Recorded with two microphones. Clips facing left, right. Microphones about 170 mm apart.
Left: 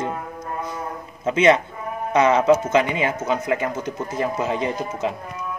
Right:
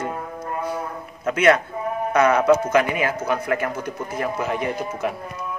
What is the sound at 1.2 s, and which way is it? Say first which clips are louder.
Speech: left 1 dB; 20° left (ahead or behind).